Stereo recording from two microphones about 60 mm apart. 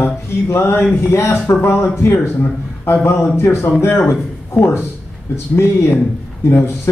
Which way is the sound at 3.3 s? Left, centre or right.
Left.